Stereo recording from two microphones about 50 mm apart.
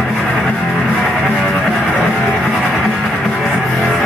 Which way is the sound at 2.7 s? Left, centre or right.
Centre.